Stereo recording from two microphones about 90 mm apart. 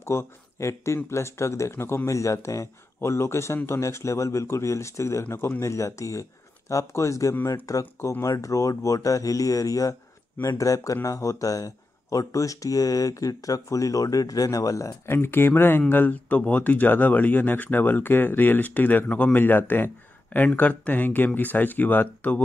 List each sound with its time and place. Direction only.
0.0 s speech: 30° left (ahead or behind)
15.1 s speech: 25° left (ahead or behind)